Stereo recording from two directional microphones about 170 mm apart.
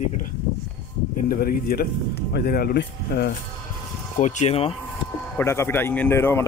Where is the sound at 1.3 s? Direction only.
60° left (ahead or behind).